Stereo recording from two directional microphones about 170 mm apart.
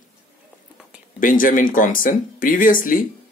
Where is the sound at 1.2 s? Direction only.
55° left (ahead or behind).